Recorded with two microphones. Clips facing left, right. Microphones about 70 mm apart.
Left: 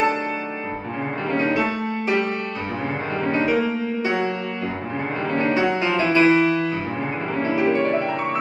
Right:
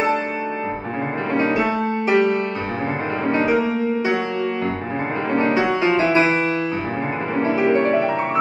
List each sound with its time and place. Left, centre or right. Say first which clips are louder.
1.3 s music: right 2 dB; centre
3.3 s music: right 2 dB; right
5.3 s music: right 2 dB; right